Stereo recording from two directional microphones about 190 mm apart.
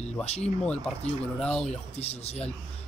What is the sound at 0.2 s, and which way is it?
Speech, 35° left (ahead or behind).